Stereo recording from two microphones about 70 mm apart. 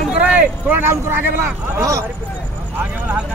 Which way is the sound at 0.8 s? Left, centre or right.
Right.